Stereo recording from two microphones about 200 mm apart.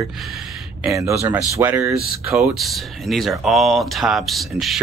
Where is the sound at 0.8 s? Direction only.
15° right (ahead or behind).